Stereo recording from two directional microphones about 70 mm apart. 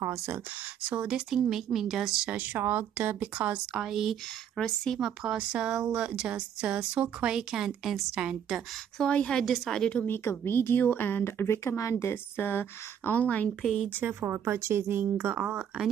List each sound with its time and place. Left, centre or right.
0.8 s speech: centre
2.3 s speech: right; by 4.2 s centre
4.6 s a woman's voice: centre
5.0 s speech: centre
8.9 s a woman's voice: centre
10.0 s speech: left
13.6 s speech: centre
13.9 s speech: right